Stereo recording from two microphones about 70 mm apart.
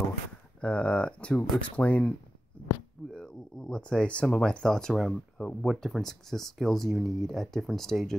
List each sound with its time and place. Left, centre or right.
0.6 s speech: centre